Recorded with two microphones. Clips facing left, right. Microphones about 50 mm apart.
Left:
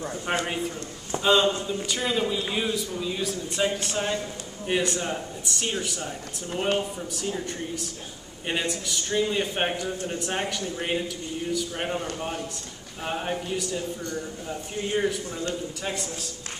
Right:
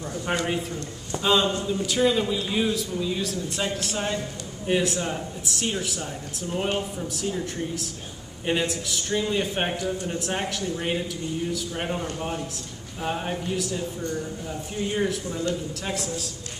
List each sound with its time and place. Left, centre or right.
0.0 s a man's voice: centre
1.2 s a man's voice: centre